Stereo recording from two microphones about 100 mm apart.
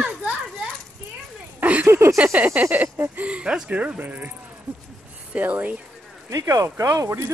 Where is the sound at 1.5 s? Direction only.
15° right (ahead or behind).